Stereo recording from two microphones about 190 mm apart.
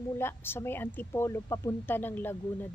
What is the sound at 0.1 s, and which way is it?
Speech, 10° left (ahead or behind).